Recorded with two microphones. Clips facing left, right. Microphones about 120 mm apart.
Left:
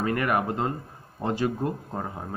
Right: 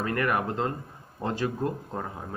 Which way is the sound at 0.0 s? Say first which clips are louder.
Left 2 dB; 15° left (ahead or behind).